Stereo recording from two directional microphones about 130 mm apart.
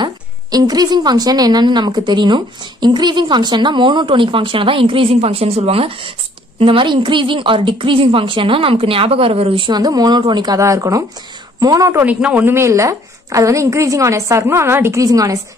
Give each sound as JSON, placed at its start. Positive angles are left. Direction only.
{"t": 0.0, "sound": "a woman's voice", "side_deg": -30}
{"t": 9.7, "sound": "a woman's voice", "side_deg": -30}
{"t": 12.0, "sound": "a woman's voice", "side_deg": -10}